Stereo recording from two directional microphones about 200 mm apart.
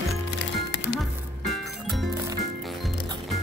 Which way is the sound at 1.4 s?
Centre (ahead or behind).